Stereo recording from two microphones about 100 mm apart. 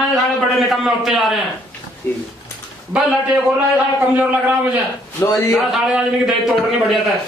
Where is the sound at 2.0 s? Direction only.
20° left (ahead or behind).